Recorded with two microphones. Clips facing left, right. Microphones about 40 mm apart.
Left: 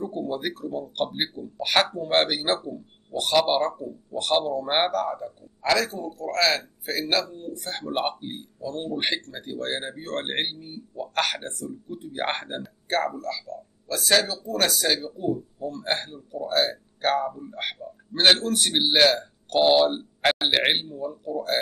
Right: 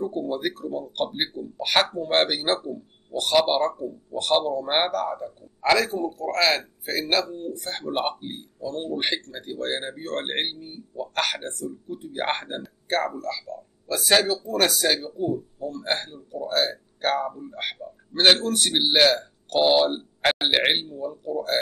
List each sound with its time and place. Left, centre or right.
0.0 s speech: centre
5.6 s a man's voice: centre